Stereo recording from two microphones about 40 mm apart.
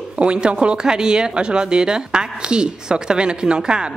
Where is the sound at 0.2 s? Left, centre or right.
Right.